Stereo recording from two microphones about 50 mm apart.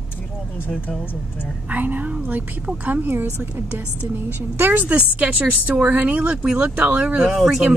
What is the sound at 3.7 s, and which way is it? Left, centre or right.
A woman's voice, right.